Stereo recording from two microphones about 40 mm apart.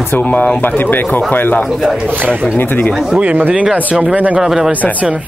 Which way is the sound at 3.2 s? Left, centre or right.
Right.